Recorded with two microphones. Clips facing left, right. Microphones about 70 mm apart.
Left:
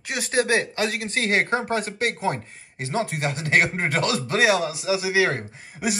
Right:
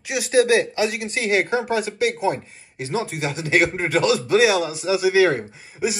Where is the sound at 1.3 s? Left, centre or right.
Left.